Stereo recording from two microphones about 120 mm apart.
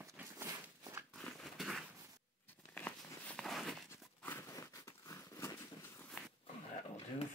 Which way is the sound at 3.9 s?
20° left (ahead or behind).